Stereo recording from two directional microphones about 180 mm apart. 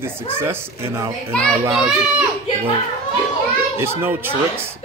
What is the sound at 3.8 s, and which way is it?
Speech, 15° right (ahead or behind).